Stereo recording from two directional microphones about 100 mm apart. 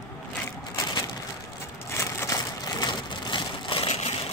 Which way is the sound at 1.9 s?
25° left (ahead or behind).